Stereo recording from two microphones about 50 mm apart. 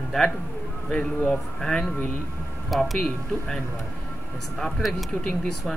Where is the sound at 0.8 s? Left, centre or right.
Centre.